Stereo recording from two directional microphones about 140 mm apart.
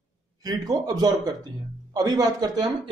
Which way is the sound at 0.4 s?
25° right (ahead or behind).